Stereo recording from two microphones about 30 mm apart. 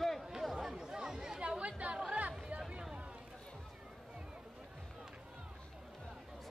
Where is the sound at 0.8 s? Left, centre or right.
Right.